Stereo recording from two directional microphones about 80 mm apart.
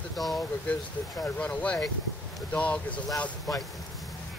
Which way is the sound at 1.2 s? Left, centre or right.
Centre.